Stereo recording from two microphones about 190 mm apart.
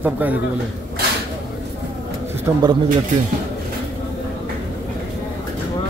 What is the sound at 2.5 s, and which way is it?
Speech, 15° right (ahead or behind).